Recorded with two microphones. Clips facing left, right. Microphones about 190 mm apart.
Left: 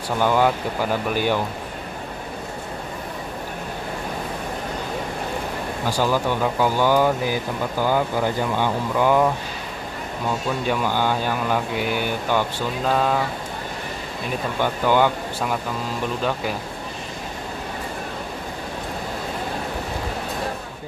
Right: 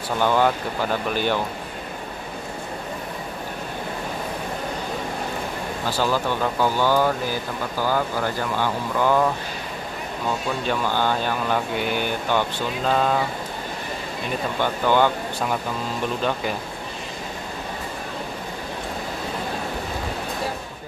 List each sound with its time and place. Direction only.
0.2 s speech: 10° left (ahead or behind)
5.9 s speech: 15° left (ahead or behind)
10.7 s speech: 10° left (ahead or behind)
14.6 s speech: 10° left (ahead or behind)